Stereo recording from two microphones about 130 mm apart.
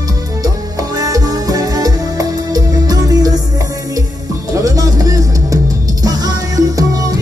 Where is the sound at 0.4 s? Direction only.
25° right (ahead or behind).